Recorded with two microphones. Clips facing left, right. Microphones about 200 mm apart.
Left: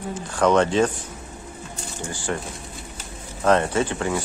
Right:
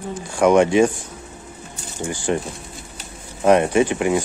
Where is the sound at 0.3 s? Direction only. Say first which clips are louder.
Right 4 dB; 10° right (ahead or behind).